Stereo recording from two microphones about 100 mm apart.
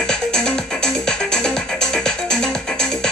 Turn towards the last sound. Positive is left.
turn(degrees=5)  # may be behind; listen again after turning